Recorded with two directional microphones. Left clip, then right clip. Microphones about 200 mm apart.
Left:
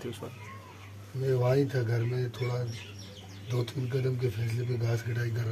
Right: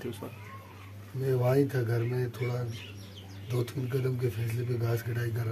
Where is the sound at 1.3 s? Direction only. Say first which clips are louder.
Even; 20° right (ahead or behind).